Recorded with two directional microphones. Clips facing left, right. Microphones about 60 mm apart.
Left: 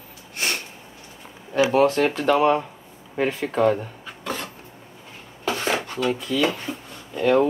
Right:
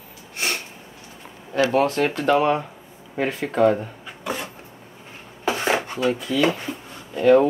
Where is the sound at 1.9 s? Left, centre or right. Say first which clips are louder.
Even; centre.